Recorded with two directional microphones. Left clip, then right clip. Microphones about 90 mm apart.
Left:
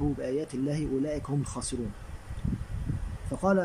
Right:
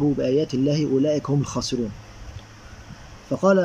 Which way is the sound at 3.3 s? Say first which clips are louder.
Right 9 dB; 15° right (ahead or behind).